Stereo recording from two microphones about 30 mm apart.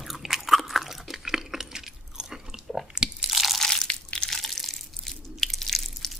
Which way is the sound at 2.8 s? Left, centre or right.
Right.